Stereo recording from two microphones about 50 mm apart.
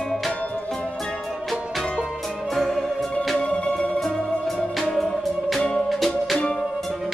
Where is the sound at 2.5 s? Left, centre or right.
Centre.